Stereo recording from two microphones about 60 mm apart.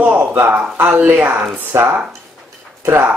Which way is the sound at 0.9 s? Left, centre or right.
Right.